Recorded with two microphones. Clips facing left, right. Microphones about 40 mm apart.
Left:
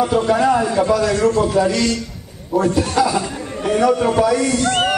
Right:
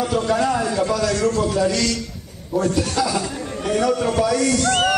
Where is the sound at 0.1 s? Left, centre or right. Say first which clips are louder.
Left 4 dB; centre.